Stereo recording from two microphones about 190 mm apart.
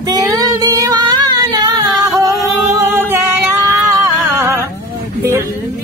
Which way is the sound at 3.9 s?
15° right (ahead or behind).